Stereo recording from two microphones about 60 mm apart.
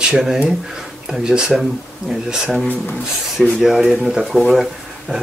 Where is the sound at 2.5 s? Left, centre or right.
Left.